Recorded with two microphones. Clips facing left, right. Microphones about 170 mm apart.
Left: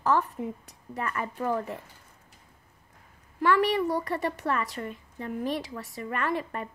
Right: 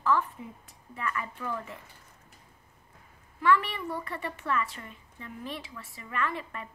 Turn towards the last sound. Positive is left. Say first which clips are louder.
# left 4 dB
turn(degrees=40)  # may be behind; listen again after turning